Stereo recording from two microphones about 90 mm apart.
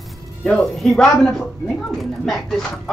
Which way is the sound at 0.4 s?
5° left (ahead or behind).